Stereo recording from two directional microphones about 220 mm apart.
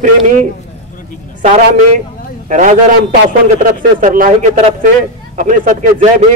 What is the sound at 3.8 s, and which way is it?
Speech, 40° right (ahead or behind).